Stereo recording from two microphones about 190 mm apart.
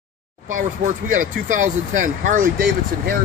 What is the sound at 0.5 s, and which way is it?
Speech, 45° right (ahead or behind).